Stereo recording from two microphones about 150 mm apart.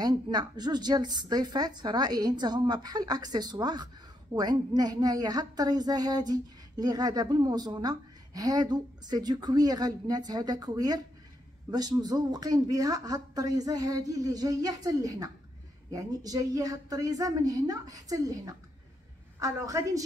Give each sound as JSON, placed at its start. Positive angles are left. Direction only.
{"t": 0.0, "sound": "a woman's voice", "side_deg": -30}